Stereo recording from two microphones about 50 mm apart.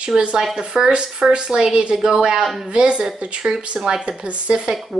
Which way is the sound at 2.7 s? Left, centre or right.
Right.